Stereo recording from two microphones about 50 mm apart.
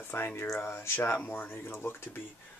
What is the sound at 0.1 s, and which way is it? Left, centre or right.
Speech, left.